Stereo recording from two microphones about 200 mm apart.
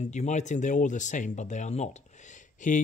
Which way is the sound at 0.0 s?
35° left (ahead or behind).